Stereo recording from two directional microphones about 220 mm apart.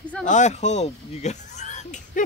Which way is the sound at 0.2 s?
35° left (ahead or behind).